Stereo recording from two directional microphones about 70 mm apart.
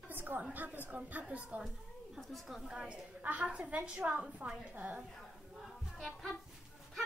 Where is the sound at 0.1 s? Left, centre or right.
Right.